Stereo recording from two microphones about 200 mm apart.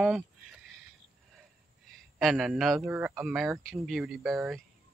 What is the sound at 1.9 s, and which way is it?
A man's voice, centre (ahead or behind).